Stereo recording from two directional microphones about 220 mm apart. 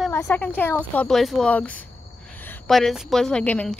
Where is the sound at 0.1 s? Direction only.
10° left (ahead or behind).